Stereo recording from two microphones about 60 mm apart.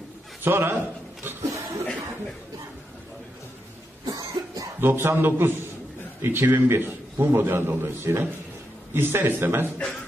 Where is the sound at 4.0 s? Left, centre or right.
Right.